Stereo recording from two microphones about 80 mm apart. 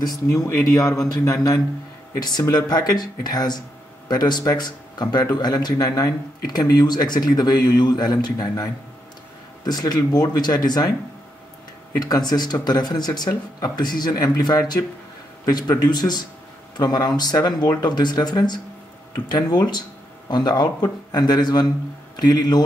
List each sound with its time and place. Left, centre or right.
0.0 s speech: left
2.1 s speech: left
9.7 s speech: left
12.0 s speech: left
14.1 s a man's voice: left